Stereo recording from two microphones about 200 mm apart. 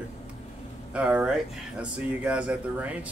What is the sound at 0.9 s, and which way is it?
Speech, 5° right (ahead or behind).